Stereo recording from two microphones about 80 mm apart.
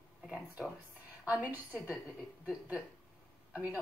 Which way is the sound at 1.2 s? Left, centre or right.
Centre.